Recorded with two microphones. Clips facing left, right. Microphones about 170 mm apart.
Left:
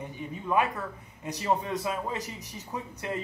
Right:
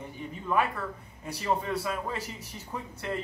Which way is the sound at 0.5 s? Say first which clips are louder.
Left 1 dB; 15° left (ahead or behind).